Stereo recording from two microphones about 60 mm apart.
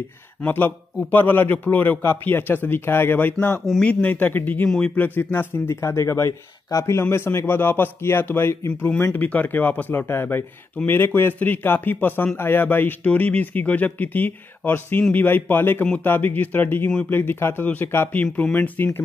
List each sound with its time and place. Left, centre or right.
0.5 s a man's voice: left
4.6 s speech: centre
4.9 s a man's voice: left
9.1 s a man's voice: left
18.2 s speech: left